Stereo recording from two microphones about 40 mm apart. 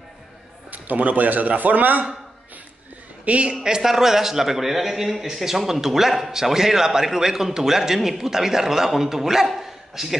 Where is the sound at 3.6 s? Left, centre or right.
Centre.